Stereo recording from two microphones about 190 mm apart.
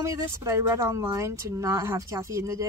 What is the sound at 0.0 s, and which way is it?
Speech, 15° right (ahead or behind).